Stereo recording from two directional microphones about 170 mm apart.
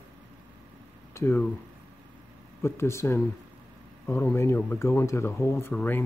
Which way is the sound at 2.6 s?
15° left (ahead or behind).